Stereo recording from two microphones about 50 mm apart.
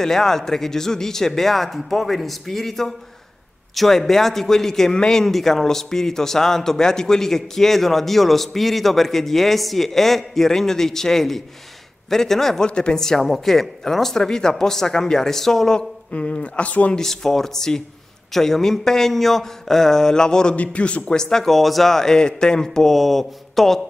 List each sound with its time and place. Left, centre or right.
0.0 s a man's voice: centre
12.6 s a man's voice: centre
16.1 s speech: left
16.9 s a man's voice: centre
20.5 s a man's voice: left
22.9 s speech: centre